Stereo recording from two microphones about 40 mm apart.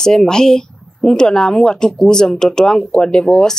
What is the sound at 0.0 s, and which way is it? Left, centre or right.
A woman's voice, centre.